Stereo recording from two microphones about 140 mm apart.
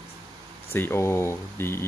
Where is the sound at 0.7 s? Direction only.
15° left (ahead or behind).